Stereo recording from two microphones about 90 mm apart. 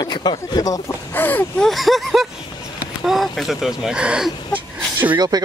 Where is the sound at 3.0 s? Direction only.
Centre (ahead or behind).